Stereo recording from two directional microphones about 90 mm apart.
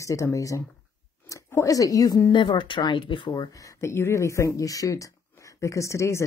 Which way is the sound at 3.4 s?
40° left (ahead or behind).